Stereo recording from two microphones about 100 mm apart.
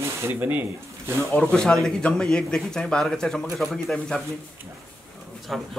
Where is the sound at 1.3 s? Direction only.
5° left (ahead or behind).